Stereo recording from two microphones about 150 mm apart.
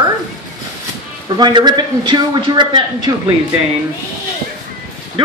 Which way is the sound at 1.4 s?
30° right (ahead or behind).